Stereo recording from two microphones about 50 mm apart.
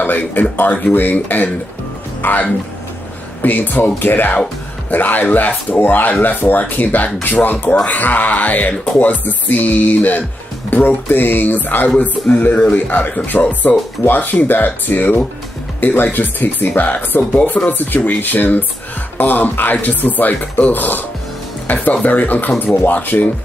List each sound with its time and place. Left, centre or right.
0.0 s speech: left
3.4 s speech: left
11.9 s speech: left
23.1 s speech: left